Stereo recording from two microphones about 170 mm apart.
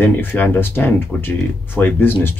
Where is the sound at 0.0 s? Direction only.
10° left (ahead or behind).